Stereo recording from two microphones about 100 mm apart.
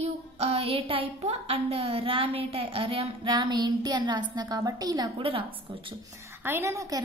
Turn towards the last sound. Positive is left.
turn(degrees=-30)  # may be behind; listen again after turning